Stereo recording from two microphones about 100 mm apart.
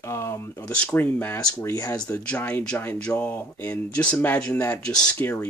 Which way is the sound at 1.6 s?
30° left (ahead or behind).